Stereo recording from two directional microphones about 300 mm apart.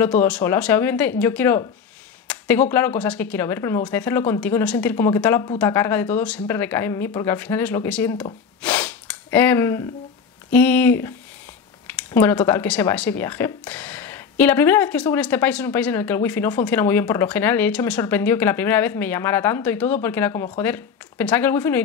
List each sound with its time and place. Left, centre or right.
0.0 s speech: centre
8.6 s sniff: centre
10.5 s speech: centre